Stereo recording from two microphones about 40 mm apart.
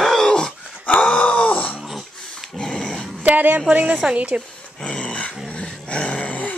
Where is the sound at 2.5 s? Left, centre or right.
Centre.